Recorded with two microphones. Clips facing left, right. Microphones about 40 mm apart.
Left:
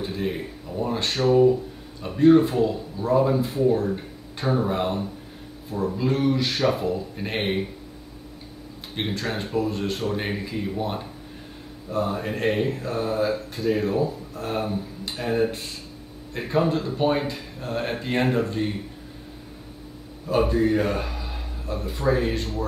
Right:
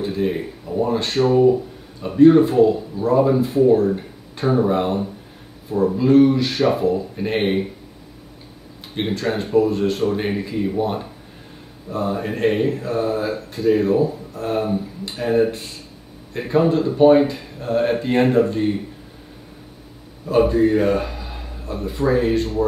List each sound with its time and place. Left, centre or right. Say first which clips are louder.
0.0 s speech: right 6 dB; centre
8.9 s speech: right 6 dB; centre
20.2 s a man's voice: right 5 dB; centre